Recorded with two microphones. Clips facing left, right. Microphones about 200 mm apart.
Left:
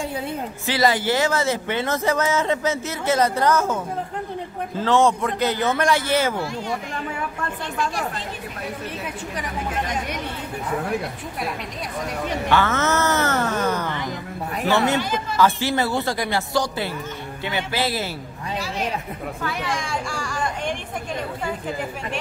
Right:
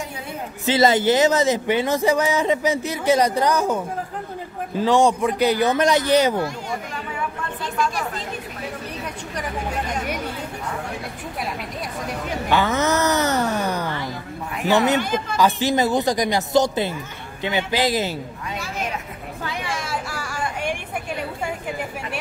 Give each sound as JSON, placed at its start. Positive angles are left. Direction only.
{"t": 0.7, "sound": "speech", "side_deg": -20}
{"t": 12.4, "sound": "speech", "side_deg": -15}
{"t": 15.3, "sound": "speech", "side_deg": -15}
{"t": 19.4, "sound": "a sound", "side_deg": -15}